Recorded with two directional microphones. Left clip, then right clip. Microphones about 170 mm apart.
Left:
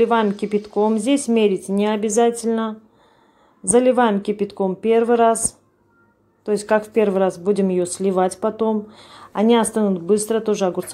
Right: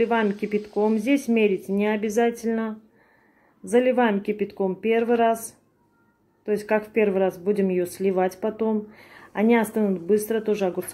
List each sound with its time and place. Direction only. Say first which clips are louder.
0.0 s speech: left 5 dB; 20° left (ahead or behind)
3.7 s speech: left 5 dB; 20° left (ahead or behind)
6.4 s speech: left 5 dB; 20° left (ahead or behind)